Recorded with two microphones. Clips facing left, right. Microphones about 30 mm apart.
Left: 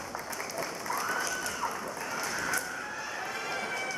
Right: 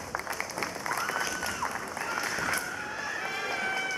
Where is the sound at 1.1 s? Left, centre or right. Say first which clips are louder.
Right 1 dB; right.